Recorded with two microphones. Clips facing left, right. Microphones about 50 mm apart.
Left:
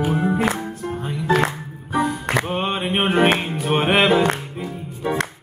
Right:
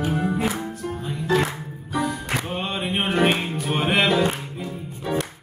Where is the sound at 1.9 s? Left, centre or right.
Left.